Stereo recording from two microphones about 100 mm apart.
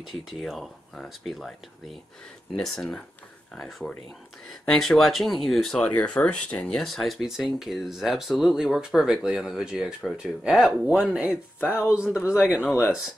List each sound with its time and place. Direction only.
0.4 s speech: centre (ahead or behind)
2.5 s speech: 5° left (ahead or behind)
11.6 s speech: 20° left (ahead or behind)
11.9 s speech: 10° right (ahead or behind)
12.6 s speech: 10° left (ahead or behind)